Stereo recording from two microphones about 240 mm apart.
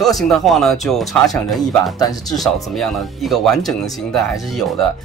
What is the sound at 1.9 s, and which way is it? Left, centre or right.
Speech, centre.